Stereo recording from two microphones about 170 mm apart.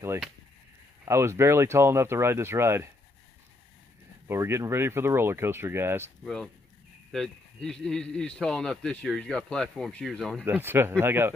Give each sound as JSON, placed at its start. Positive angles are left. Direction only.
{"t": 1.0, "sound": "speech", "side_deg": -15}
{"t": 4.3, "sound": "speech", "side_deg": -15}
{"t": 6.2, "sound": "speech", "side_deg": 5}
{"t": 10.4, "sound": "speech", "side_deg": -10}